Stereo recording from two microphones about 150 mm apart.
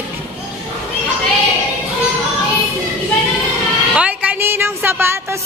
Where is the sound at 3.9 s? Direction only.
10° right (ahead or behind).